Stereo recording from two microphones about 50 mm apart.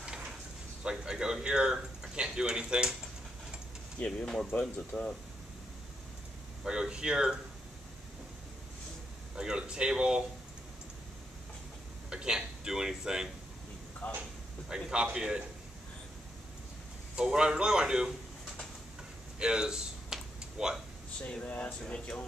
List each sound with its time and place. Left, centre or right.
0.8 s speech: centre
4.6 s speech: left
6.6 s a man's voice: centre
9.3 s a man's voice: centre
12.1 s a man's voice: centre
14.0 s speech: left
14.7 s a man's voice: centre
17.1 s a man's voice: centre
19.3 s a sound: centre
21.2 s speech: left